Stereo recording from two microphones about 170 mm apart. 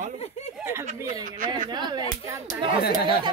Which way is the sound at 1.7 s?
25° right (ahead or behind).